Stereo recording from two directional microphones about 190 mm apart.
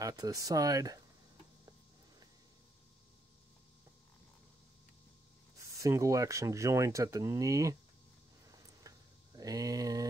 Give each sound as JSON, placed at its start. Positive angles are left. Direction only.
{"t": 0.0, "sound": "speech", "side_deg": -20}
{"t": 5.8, "sound": "speech", "side_deg": -15}
{"t": 8.5, "sound": "a sound", "side_deg": -20}